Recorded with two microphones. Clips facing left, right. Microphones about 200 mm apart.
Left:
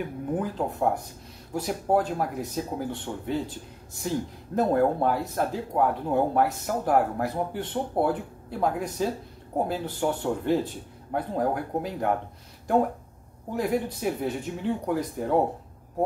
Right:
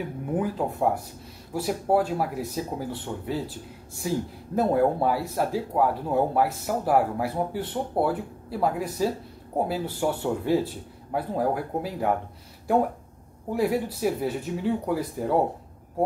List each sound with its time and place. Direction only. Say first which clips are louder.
0.0 s speech: right 1 dB; 5° right (ahead or behind)
4.6 s speech: right 1 dB; 5° right (ahead or behind)
13.6 s speech: right 2 dB; 5° right (ahead or behind)